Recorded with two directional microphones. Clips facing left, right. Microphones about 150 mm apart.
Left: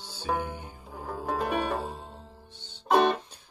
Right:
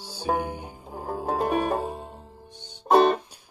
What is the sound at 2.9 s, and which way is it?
Music, 50° right (ahead or behind).